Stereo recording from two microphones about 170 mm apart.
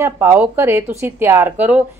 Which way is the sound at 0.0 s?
15° right (ahead or behind).